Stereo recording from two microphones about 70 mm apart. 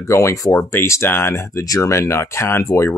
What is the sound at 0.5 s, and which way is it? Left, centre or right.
Speech, left.